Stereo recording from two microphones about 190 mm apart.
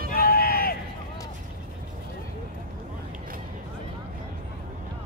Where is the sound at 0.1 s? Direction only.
50° left (ahead or behind).